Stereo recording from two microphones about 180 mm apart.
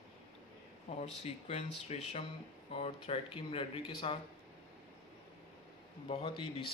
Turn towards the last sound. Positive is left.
turn(degrees=30)  # may be behind; listen again after turning